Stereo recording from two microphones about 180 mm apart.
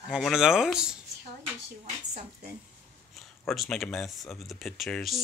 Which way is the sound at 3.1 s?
Centre (ahead or behind).